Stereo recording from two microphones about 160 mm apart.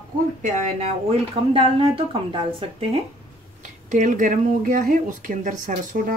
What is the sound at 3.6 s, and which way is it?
Speech, 50° right (ahead or behind).